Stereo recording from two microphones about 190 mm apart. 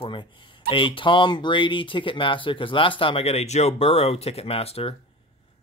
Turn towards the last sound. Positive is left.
turn(degrees=30)  # may be behind; listen again after turning